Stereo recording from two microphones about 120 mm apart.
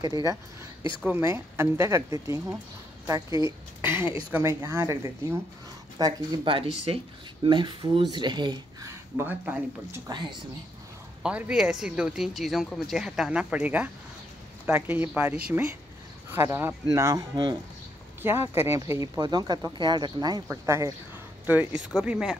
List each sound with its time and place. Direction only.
0.0 s speech: 30° right (ahead or behind)
1.0 s speech: 20° right (ahead or behind)
5.9 s speech: 30° right (ahead or behind)
8.8 s a woman's voice: 15° right (ahead or behind)
11.2 s a woman's voice: 10° right (ahead or behind); by 20.4 s 35° right (ahead or behind)
20.4 s speech: 25° right (ahead or behind)
21.9 s a woman's voice: 10° right (ahead or behind)